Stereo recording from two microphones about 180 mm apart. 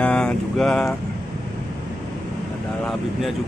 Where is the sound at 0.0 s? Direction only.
5° left (ahead or behind).